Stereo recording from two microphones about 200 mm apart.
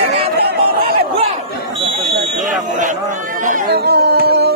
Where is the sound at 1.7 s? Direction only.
25° right (ahead or behind).